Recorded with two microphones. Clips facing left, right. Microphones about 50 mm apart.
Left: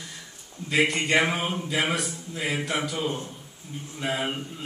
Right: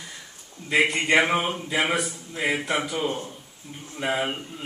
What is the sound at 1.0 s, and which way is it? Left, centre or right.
A man's voice, centre.